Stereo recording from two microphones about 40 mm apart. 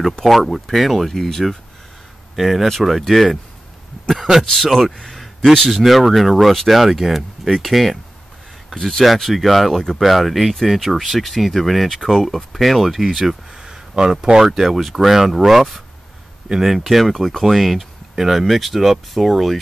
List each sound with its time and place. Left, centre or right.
0.2 s speech: centre
4.6 s speech: centre
4.9 s speech: centre
5.2 s a sound: centre
5.7 s speech: centre
13.5 s a sound: centre
14.2 s speech: centre
14.5 s speech: centre
16.8 s speech: centre